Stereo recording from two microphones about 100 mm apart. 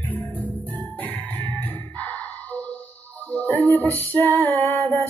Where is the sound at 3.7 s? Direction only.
25° right (ahead or behind).